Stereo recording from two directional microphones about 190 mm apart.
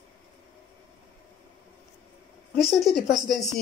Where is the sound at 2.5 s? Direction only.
Centre (ahead or behind).